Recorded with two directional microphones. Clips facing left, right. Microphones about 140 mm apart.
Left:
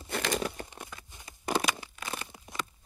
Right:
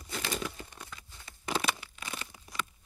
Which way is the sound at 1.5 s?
40° left (ahead or behind).